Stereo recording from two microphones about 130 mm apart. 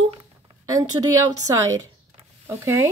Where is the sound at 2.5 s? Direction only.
20° right (ahead or behind).